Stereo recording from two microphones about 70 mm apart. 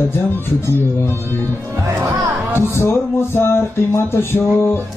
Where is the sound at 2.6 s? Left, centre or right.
Left.